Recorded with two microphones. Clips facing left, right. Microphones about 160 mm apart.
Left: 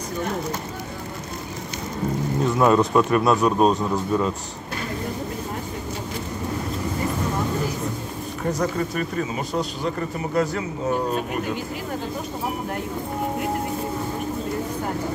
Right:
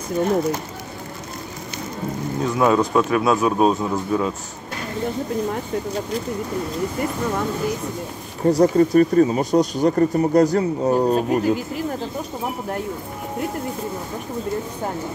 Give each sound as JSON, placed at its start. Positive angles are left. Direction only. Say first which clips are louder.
{"t": 2.4, "sound": "speech", "louder": "even", "side_deg": 0}
{"t": 8.5, "sound": "speech", "louder": "right 9 dB", "side_deg": -35}